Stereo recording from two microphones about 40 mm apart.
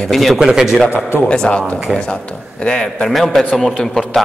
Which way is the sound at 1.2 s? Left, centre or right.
Left.